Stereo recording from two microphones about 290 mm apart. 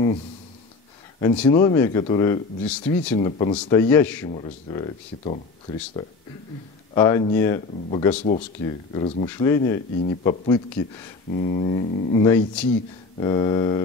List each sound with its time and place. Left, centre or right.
1.2 s speech: centre
3.2 s speech: centre
6.9 s speech: centre
8.2 s speech: left